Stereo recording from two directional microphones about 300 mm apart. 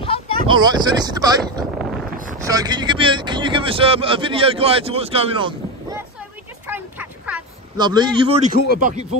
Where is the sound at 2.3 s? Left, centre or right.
Centre.